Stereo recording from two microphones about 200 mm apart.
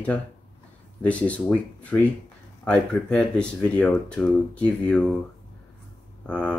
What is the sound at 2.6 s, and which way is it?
Speech, 5° left (ahead or behind).